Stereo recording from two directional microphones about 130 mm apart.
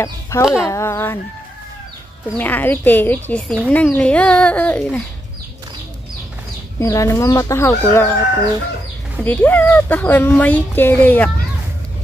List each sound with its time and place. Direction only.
0.0 s speech: 25° left (ahead or behind)
2.3 s speech: 15° left (ahead or behind)
6.8 s speech: 25° left (ahead or behind)
9.2 s speech: 15° left (ahead or behind)